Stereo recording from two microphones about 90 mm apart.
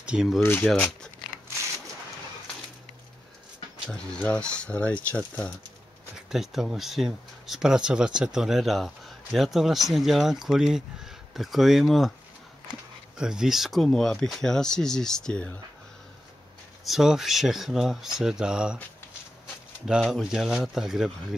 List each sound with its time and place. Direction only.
0.0 s speech: 10° right (ahead or behind)
0.4 s speech: 25° left (ahead or behind)
0.7 s speech: 10° left (ahead or behind)
3.9 s speech: 10° left (ahead or behind)
6.1 s speech: 5° right (ahead or behind)
13.2 s speech: 5° right (ahead or behind); by 15.5 s 10° left (ahead or behind)
16.8 s speech: 5° right (ahead or behind)
19.9 s speech: 5° right (ahead or behind)